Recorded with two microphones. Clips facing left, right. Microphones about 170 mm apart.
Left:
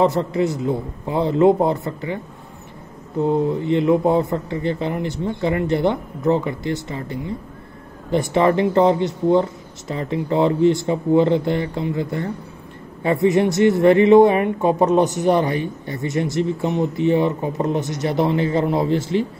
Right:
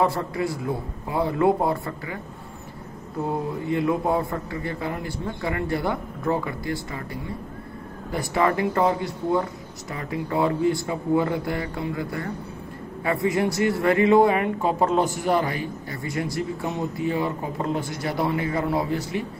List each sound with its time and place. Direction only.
0.0 s speech: 20° left (ahead or behind)
3.3 s speech: 25° left (ahead or behind)